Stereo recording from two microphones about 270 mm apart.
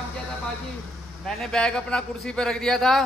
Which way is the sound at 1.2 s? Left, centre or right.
Centre.